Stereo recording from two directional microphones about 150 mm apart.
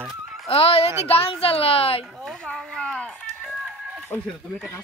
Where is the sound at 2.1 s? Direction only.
Centre (ahead or behind).